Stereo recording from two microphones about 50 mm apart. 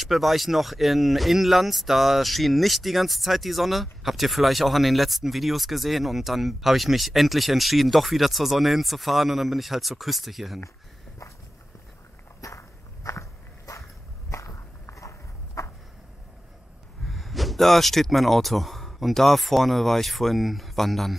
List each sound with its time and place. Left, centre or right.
0.0 s speech: centre
12.4 s walk: left
17.0 s speech: centre